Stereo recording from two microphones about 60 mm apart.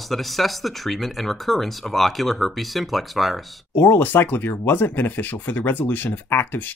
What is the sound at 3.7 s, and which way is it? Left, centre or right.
Speech, left.